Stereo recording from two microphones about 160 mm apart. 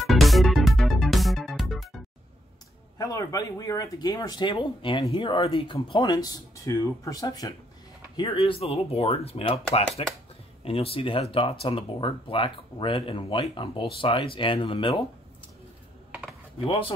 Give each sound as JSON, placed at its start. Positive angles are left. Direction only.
{"t": 0.0, "sound": "music", "side_deg": 0}
{"t": 3.0, "sound": "speech", "side_deg": 20}
{"t": 8.2, "sound": "speech", "side_deg": 35}
{"t": 16.5, "sound": "speech", "side_deg": 35}